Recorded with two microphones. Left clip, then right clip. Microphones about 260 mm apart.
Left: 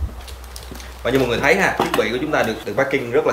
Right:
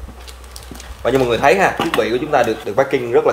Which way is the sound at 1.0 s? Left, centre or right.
Right.